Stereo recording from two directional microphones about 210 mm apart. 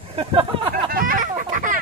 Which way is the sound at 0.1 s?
30° right (ahead or behind).